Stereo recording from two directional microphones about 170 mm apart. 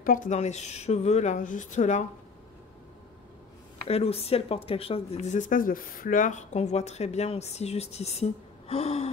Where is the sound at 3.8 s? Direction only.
35° left (ahead or behind).